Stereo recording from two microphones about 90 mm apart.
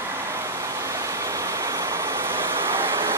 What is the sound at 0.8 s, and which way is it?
Vehicle, 35° right (ahead or behind).